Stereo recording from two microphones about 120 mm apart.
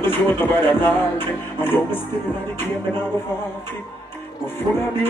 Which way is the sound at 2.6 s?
20° left (ahead or behind).